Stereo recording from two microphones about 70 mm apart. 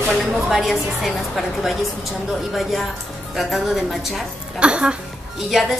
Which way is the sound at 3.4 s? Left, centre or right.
Centre.